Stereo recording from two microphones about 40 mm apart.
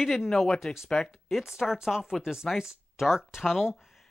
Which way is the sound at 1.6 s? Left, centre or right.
Centre.